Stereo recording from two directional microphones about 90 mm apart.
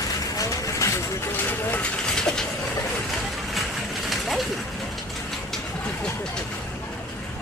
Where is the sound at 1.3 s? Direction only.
20° left (ahead or behind).